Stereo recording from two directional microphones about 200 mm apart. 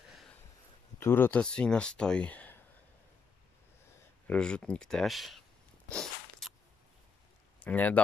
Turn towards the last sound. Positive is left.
turn(degrees=10)  # may be behind; listen again after turning